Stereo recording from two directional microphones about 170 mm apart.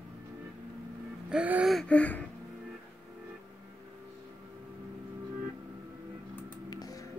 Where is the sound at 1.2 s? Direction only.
5° right (ahead or behind); by 2.3 s 10° left (ahead or behind).